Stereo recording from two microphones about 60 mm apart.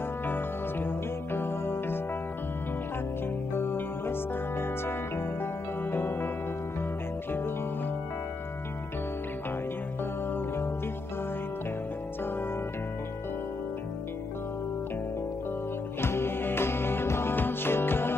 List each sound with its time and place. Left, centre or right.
0.3 s music: left
3.5 s music: left
16.0 s music: left